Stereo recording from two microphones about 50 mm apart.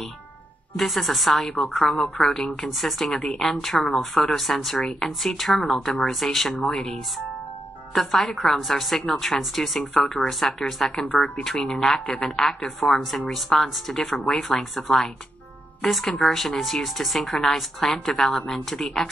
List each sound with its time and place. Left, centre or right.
0.7 s a woman's voice: centre